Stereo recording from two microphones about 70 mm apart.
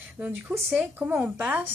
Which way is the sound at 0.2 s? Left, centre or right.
Centre.